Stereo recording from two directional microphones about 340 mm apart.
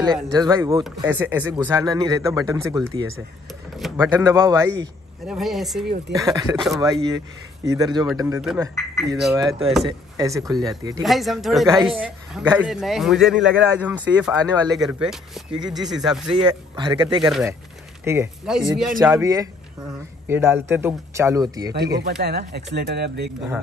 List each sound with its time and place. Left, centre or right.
0.0 s a man's voice: centre
9.4 s speech: centre
11.0 s a man's voice: centre
16.3 s speech: centre
17.3 s a man's voice: centre
22.0 s speech: right